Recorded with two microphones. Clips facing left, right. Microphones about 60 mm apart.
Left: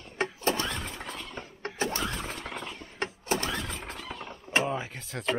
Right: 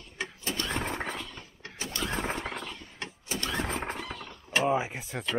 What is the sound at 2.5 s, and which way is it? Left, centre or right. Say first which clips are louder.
Mechanisms: even; centre.